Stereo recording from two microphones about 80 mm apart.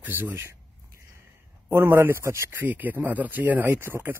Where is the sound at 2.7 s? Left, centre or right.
Right.